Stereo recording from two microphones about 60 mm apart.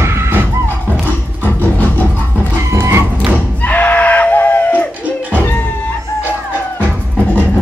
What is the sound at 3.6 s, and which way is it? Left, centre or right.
Screaming, left.